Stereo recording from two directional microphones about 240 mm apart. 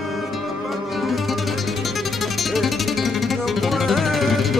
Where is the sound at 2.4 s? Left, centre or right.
Centre.